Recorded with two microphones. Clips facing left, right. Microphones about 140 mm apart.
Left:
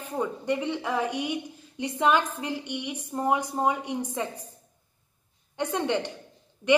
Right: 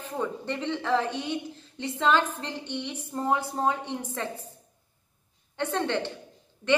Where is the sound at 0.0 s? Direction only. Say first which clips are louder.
Left 1 dB; 10° left (ahead or behind).